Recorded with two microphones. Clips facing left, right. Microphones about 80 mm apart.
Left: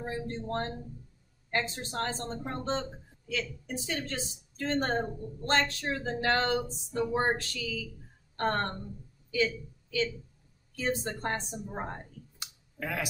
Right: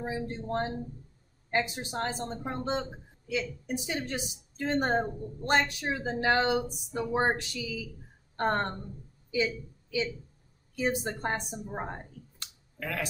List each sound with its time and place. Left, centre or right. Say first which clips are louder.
0.0 s a woman's voice: right 1 dB; centre
11.1 s a woman's voice: right 1 dB; centre
12.4 s clicking: left 2 dB; centre